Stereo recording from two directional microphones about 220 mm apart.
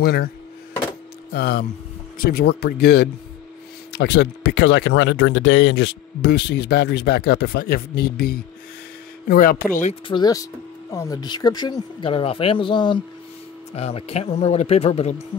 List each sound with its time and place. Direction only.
0.0 s speech: 45° left (ahead or behind)
1.3 s speech: 45° left (ahead or behind)
10.0 s speech: 20° left (ahead or behind)